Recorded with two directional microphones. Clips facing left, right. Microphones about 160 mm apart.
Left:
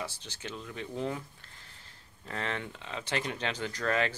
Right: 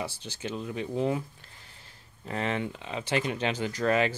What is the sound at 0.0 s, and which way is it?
Speech, 10° right (ahead or behind).